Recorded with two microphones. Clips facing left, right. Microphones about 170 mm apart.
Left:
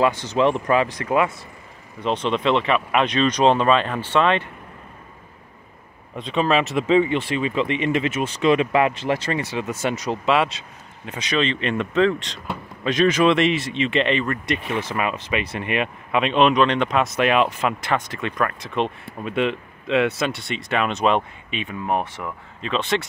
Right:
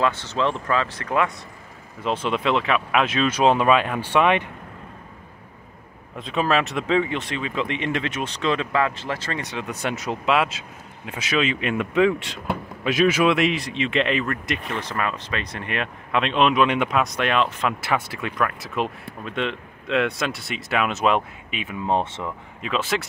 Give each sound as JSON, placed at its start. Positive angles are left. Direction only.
{"t": 0.0, "sound": "speech", "side_deg": 15}
{"t": 2.0, "sound": "speech", "side_deg": -5}
{"t": 6.1, "sound": "speech", "side_deg": 0}
{"t": 9.4, "sound": "speech", "side_deg": 5}
{"t": 17.8, "sound": "speech", "side_deg": -5}
{"t": 21.8, "sound": "speech", "side_deg": -20}
{"t": 22.6, "sound": "speech", "side_deg": -5}